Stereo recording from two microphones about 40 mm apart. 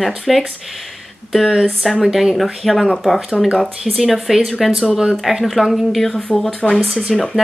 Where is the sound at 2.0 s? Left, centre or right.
Centre.